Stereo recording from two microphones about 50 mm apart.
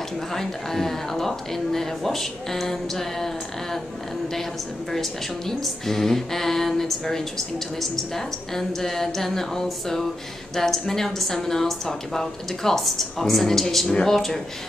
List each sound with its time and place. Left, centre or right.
0.3 s speech: centre
5.5 s speech: centre